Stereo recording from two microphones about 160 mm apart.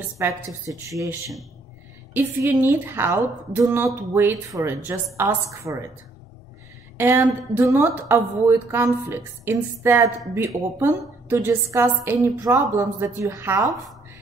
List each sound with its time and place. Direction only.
0.2 s a woman's voice: 15° right (ahead or behind)
7.0 s a woman's voice: 15° right (ahead or behind)